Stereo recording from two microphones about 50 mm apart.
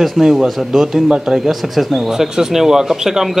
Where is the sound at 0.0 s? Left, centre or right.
Centre.